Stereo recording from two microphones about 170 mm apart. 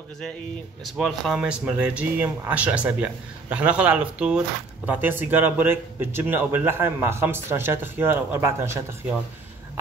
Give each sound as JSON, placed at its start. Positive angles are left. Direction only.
{"t": 0.8, "sound": "a man's voice", "side_deg": 0}